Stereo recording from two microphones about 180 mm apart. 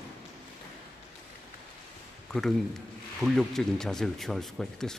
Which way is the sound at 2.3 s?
Centre (ahead or behind).